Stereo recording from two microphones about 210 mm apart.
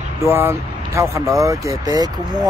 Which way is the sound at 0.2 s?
10° right (ahead or behind).